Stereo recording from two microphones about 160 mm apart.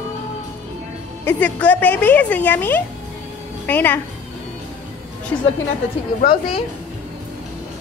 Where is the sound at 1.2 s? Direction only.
10° left (ahead or behind).